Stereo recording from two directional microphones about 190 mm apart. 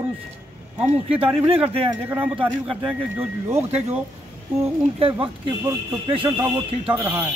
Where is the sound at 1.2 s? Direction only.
30° right (ahead or behind).